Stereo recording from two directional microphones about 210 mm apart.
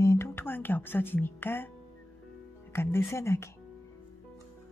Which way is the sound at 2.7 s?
10° left (ahead or behind).